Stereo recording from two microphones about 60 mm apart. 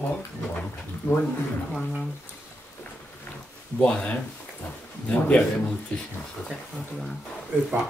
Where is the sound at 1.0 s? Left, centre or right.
Left.